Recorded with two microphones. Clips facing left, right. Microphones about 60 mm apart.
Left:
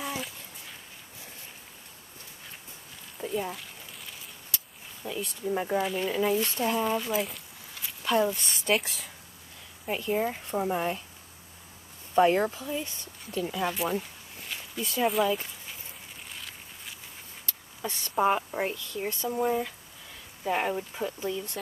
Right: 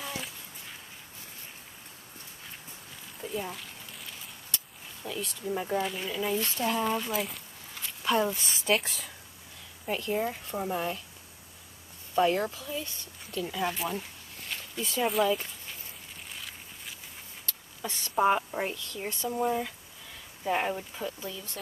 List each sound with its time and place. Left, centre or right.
3.2 s a sound: centre
5.0 s speech: centre
12.2 s speech: left
13.4 s speech: centre
16.3 s a sound: centre
17.8 s speech: centre